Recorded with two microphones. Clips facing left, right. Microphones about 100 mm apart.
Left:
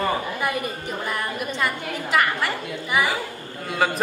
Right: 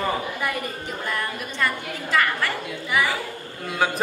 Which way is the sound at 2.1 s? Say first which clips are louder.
Left 1 dB; 20° left (ahead or behind).